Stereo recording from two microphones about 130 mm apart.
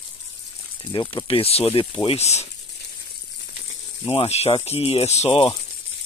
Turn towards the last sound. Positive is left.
turn(degrees=55)  # may be behind; listen again after turning